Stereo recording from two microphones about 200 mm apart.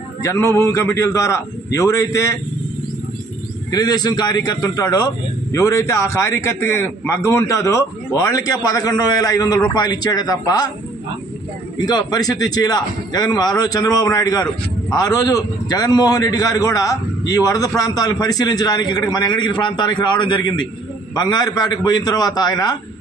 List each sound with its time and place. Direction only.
0.2 s speech: 15° left (ahead or behind)
3.7 s speech: 20° left (ahead or behind)
11.8 s a man's voice: 20° left (ahead or behind)